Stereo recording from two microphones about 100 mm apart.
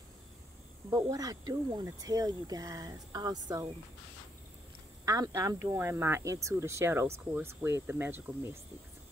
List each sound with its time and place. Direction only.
0.8 s speech: 35° right (ahead or behind)
5.0 s speech: 35° right (ahead or behind)